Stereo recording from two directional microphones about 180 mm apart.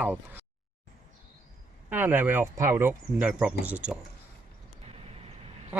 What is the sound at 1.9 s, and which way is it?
Speech, 10° right (ahead or behind).